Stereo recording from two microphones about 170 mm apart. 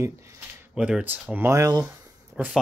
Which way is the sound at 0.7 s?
5° right (ahead or behind).